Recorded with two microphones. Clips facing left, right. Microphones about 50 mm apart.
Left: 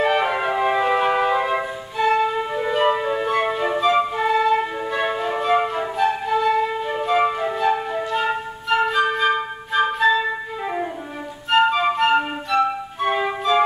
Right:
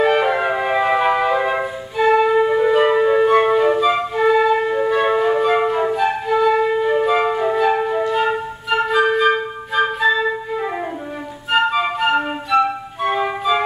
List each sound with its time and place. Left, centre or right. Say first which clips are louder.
0.0 s music: right 3 dB; centre
5.2 s flute: right 4 dB; centre
11.5 s flute: even; centre